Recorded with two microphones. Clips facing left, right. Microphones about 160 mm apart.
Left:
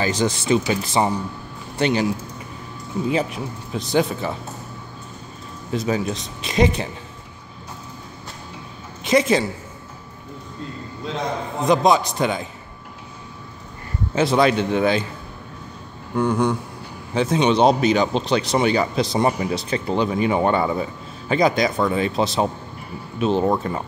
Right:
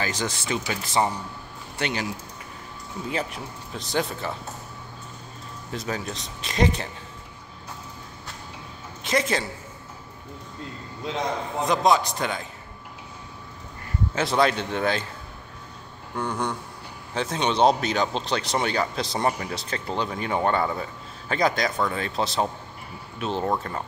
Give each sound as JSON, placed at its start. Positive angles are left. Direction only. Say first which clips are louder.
{"t": 0.0, "sound": "speech", "louder": "left 7 dB", "side_deg": 25}
{"t": 3.7, "sound": "speech", "louder": "left 7 dB", "side_deg": 10}
{"t": 5.7, "sound": "speech", "louder": "left 8 dB", "side_deg": 10}
{"t": 9.0, "sound": "a woman's voice", "louder": "left 7 dB", "side_deg": 15}
{"t": 11.7, "sound": "speech", "louder": "left 4 dB", "side_deg": 15}
{"t": 14.1, "sound": "speech", "louder": "left 5 dB", "side_deg": 10}
{"t": 16.2, "sound": "speech", "louder": "left 8 dB", "side_deg": 5}